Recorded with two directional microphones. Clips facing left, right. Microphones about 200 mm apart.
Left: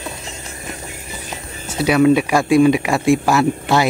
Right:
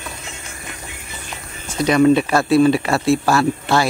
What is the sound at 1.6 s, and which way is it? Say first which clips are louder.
Speech: even; 5° left (ahead or behind).